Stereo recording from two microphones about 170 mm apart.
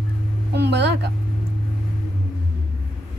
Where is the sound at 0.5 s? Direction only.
80° right.